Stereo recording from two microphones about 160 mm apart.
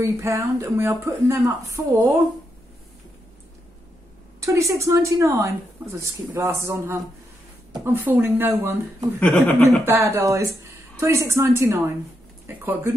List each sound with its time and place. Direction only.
0.0 s speech: 20° right (ahead or behind)
4.4 s a woman's voice: 20° right (ahead or behind)
9.2 s speech: 10° left (ahead or behind)
9.8 s a woman's voice: 15° right (ahead or behind)